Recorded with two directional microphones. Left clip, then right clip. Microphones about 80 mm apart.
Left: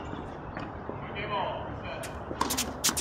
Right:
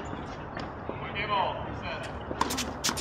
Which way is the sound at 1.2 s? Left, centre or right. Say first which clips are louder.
Right 3 dB; right.